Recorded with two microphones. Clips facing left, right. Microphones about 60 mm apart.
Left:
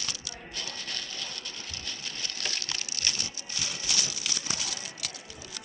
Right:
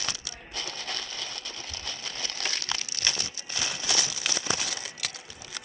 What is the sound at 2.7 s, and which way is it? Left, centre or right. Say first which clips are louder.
Crumpling: right 3 dB; right.